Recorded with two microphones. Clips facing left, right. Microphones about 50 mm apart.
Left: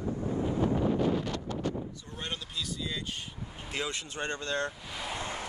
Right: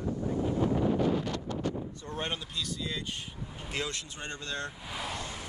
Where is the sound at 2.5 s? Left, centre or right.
Centre.